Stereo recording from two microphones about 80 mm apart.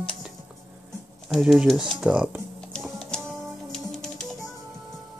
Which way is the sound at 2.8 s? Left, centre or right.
Centre.